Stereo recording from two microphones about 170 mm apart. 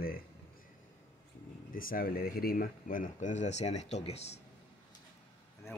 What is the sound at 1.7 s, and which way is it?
Speech, 55° left (ahead or behind).